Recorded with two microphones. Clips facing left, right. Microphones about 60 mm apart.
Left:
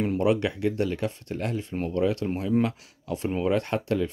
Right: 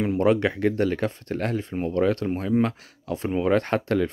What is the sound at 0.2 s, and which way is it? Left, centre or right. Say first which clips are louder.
Speech: right 5 dB; right.